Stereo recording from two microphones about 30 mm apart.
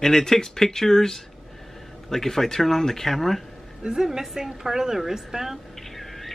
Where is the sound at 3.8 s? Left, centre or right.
Right.